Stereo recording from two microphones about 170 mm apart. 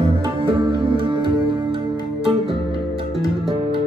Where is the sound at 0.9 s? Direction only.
30° right (ahead or behind).